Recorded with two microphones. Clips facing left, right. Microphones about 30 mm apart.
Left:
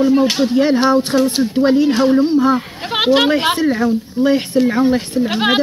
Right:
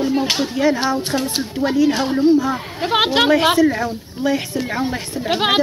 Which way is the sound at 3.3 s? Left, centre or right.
Left.